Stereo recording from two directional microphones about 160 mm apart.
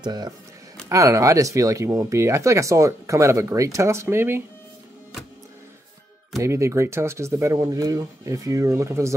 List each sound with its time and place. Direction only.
0.0 s speech: 25° right (ahead or behind)
6.4 s speech: 20° right (ahead or behind)